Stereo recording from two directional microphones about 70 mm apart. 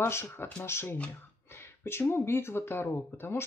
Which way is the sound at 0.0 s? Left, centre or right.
Left.